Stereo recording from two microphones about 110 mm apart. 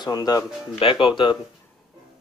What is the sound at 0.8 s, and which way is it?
Speech, 55° left (ahead or behind).